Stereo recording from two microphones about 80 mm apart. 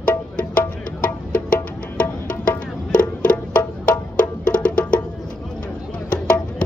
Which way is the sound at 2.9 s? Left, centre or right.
Centre.